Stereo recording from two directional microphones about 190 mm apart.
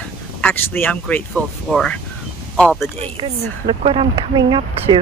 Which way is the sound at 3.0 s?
30° right (ahead or behind).